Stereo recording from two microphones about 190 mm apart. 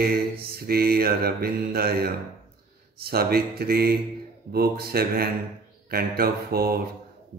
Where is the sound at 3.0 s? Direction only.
55° right (ahead or behind).